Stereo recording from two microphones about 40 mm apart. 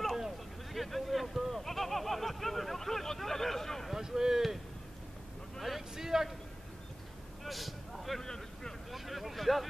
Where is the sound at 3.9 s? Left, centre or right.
Centre.